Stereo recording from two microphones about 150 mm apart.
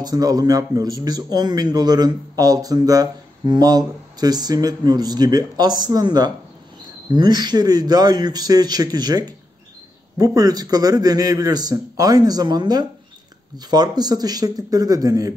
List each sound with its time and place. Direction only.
0.0 s a man's voice: 25° right (ahead or behind)